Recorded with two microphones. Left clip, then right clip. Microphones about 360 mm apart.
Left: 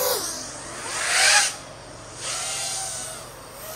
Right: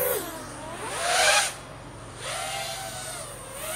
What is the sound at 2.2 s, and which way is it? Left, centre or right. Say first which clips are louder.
Bleat: left 2 dB; centre.